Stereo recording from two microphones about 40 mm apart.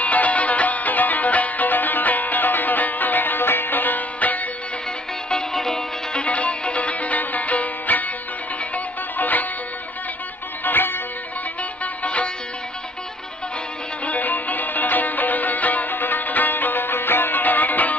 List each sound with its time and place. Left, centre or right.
0.0 s music: left
5.3 s music: centre
6.1 s music: left
10.6 s music: left
11.8 s music: left
14.0 s music: left